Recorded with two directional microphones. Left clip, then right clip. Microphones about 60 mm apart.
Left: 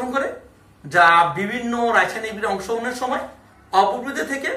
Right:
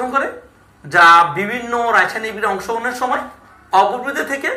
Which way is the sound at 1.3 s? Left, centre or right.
Right.